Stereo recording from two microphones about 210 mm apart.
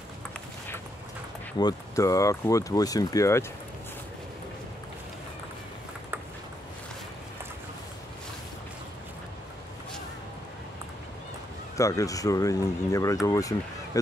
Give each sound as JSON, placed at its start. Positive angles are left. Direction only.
{"t": 1.6, "sound": "speech", "side_deg": 15}
{"t": 11.7, "sound": "speech", "side_deg": 15}